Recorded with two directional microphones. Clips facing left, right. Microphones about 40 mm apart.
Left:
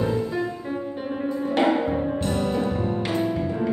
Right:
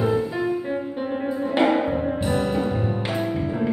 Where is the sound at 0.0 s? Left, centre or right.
Centre.